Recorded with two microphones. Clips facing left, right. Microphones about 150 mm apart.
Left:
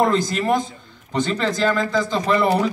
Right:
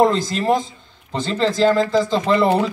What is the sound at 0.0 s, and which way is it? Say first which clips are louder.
Speech: right 2 dB; 30° right (ahead or behind).